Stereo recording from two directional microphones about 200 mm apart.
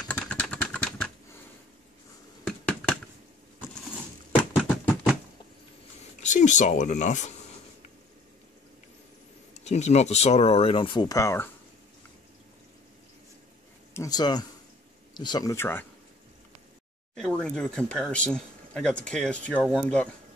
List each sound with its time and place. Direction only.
0.1 s typing: 5° left (ahead or behind)
2.4 s finger snapping: 5° left (ahead or behind)
6.2 s speech: 35° left (ahead or behind)
9.5 s speech: 35° left (ahead or behind); by 11.5 s 10° left (ahead or behind)
13.9 s a sound: 20° left (ahead or behind)
15.1 s speech: 20° left (ahead or behind)
17.1 s speech: 5° left (ahead or behind)